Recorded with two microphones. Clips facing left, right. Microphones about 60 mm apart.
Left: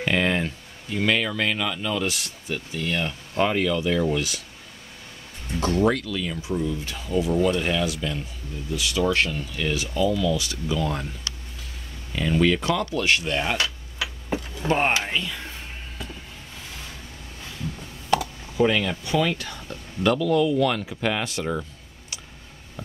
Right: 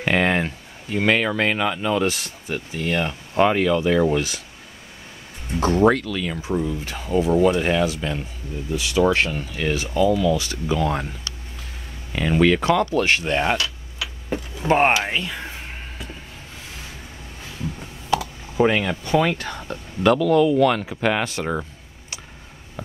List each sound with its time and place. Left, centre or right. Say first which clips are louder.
0.0 s speech: right 3 dB; right
5.6 s speech: right 4 dB; right
5.9 s speech: right 4 dB; right
6.5 s speech: right 2 dB; right
12.1 s speech: right 3 dB; right
12.6 s speech: right 5 dB; right
14.7 s speech: right 5 dB; right
18.6 s speech: right 2 dB; right
19.0 s speech: right 6 dB; right
21.2 s speech: right 3 dB; right